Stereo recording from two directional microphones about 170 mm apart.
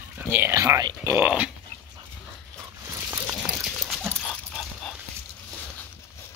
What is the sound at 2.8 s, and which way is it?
Dog, 15° right (ahead or behind).